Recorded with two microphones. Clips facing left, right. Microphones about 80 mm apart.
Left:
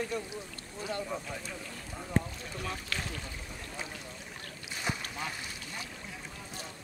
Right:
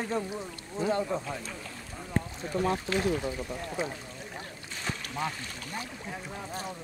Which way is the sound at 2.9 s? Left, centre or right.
Right.